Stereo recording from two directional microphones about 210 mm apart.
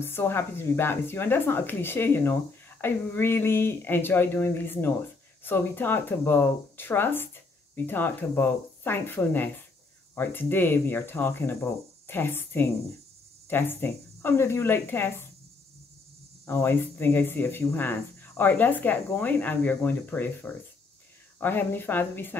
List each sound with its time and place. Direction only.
0.0 s speech: 10° left (ahead or behind)
16.4 s speech: 10° left (ahead or behind)